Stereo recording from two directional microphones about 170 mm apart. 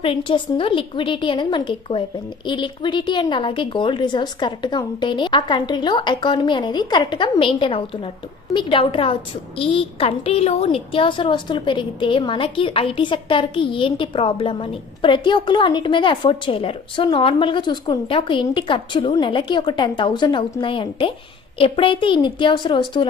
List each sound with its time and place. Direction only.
0.0 s a woman's voice: 30° left (ahead or behind)